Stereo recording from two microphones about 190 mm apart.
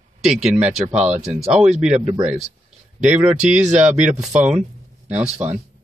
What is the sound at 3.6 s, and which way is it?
Speech, 35° right (ahead or behind).